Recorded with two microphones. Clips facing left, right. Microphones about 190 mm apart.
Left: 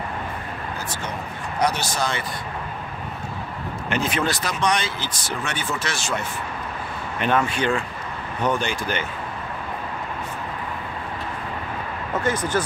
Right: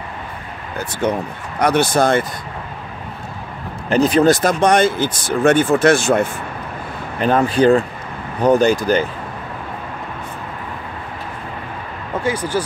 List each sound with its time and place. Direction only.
1.0 s speech: 55° right (ahead or behind)
3.9 s speech: 40° right (ahead or behind); by 6.2 s 55° right (ahead or behind)
7.2 s speech: 35° right (ahead or behind)
12.2 s speech: 10° right (ahead or behind)